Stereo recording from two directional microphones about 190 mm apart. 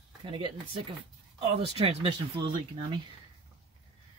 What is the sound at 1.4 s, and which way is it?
Speech, 30° right (ahead or behind).